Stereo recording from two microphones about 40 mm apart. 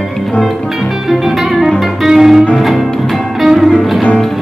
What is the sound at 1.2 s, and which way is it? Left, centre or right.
Music, centre.